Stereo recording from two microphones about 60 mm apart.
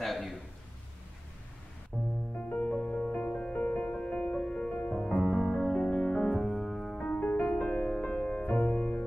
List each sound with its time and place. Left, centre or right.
0.0 s a sound: centre
1.9 s music: centre
2.3 s music: left
4.9 s music: centre
5.2 s music: centre
7.0 s music: centre